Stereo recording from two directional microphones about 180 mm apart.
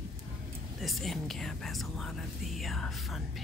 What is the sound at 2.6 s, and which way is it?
Music, centre (ahead or behind).